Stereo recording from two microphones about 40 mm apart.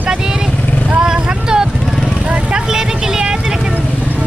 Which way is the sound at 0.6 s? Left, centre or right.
Left.